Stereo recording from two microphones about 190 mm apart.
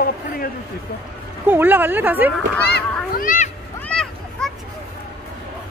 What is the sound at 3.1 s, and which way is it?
Speech, 45° left (ahead or behind).